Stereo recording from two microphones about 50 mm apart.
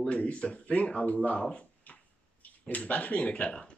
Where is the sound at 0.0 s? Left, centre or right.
Left.